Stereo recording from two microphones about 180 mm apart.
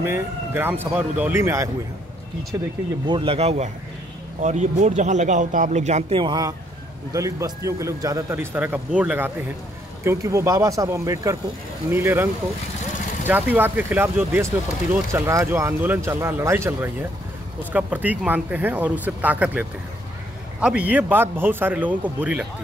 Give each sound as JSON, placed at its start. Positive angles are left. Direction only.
{"t": 0.0, "sound": "speech", "side_deg": -10}
{"t": 3.1, "sound": "a man's voice", "side_deg": -30}
{"t": 13.3, "sound": "speech", "side_deg": -10}
{"t": 20.6, "sound": "speech", "side_deg": -5}